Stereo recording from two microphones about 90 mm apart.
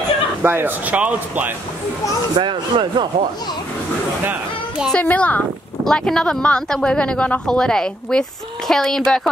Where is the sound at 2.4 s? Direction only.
65° right (ahead or behind).